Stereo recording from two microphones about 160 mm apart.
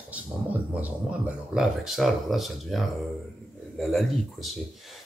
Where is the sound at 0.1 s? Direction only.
10° right (ahead or behind).